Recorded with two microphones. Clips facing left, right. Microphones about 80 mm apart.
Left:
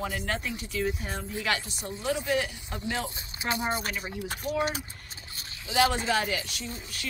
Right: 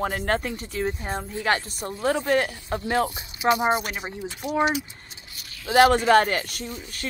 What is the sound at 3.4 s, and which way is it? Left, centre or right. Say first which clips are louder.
Speech: right 10 dB; left.